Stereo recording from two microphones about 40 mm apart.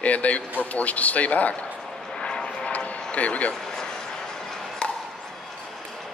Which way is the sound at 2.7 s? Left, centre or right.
Left.